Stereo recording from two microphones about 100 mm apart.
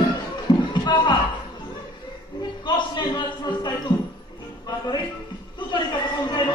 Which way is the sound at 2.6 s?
50° left (ahead or behind).